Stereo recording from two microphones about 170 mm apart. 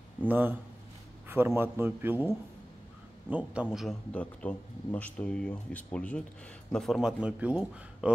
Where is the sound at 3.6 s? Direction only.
5° right (ahead or behind).